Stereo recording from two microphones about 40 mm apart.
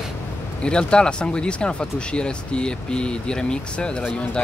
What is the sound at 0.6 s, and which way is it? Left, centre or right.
Speech, left.